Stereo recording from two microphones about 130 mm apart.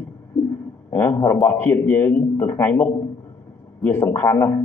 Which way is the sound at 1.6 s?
15° left (ahead or behind).